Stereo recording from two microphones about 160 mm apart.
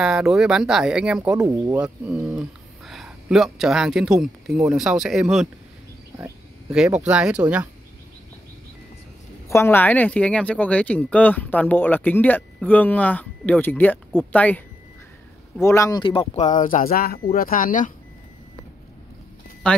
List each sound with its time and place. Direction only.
0.0 s speech: 5° right (ahead or behind)
6.7 s speech: 5° right (ahead or behind)
9.5 s speech: 15° left (ahead or behind)
15.6 s speech: 20° left (ahead or behind); by 16.5 s 35° left (ahead or behind)
16.5 s speech: 55° left (ahead or behind)